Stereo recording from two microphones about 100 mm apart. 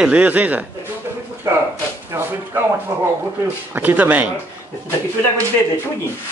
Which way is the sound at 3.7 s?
15° right (ahead or behind).